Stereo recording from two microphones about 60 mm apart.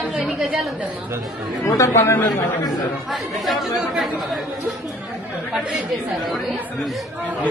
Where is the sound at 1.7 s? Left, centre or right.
Left.